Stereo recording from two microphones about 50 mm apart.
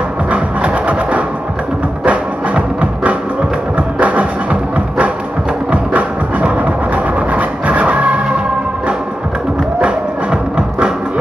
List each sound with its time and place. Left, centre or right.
0.3 s music: right
9.8 s music: centre